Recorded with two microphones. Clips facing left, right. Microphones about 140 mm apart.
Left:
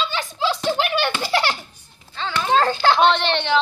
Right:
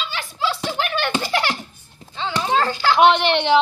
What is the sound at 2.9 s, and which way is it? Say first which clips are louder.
Speech: right 3 dB; 10° right (ahead or behind).